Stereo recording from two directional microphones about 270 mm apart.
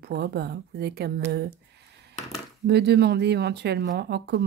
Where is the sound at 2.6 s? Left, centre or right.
Right.